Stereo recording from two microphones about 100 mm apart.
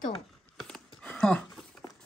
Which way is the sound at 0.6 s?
5° left (ahead or behind).